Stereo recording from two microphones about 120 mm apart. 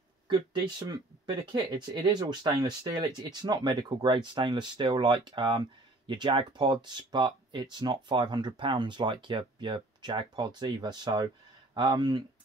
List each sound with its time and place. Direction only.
0.3 s speech: 40° right (ahead or behind)